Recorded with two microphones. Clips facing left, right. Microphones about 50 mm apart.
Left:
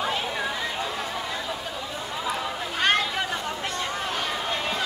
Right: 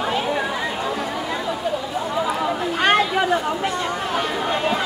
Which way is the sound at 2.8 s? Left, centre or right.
Centre.